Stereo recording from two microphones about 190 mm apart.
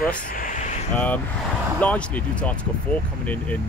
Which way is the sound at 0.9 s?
10° left (ahead or behind).